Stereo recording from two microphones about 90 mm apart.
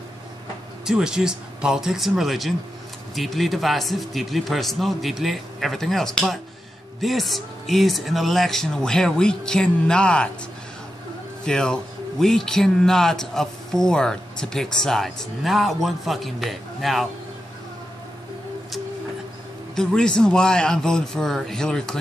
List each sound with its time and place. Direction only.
0.8 s a man's voice: 5° right (ahead or behind); by 10.3 s 10° left (ahead or behind)
11.4 s a man's voice: 10° left (ahead or behind)
19.7 s a man's voice: 5° left (ahead or behind)